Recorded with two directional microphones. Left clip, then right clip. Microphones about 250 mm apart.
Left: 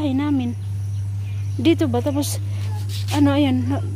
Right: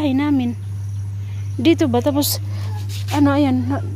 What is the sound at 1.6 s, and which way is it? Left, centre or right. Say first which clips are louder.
Speech: right 3 dB; centre.